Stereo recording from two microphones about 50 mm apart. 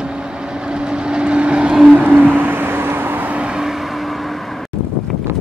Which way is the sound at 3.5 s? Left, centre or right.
Centre.